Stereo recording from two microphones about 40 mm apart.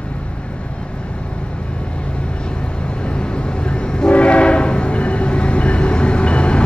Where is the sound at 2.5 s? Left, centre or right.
Left.